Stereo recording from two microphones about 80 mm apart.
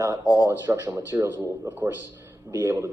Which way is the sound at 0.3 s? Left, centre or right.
Right.